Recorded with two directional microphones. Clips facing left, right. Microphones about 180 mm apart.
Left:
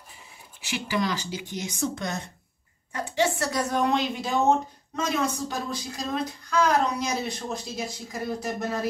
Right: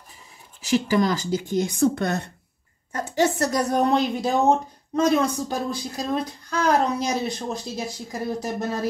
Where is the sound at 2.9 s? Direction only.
40° right (ahead or behind).